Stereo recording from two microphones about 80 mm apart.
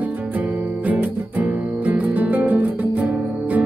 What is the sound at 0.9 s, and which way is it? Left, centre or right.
Music, right.